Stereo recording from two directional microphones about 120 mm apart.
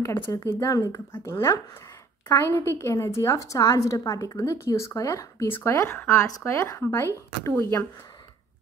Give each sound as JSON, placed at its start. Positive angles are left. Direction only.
{"t": 0.3, "sound": "a woman's voice", "side_deg": 25}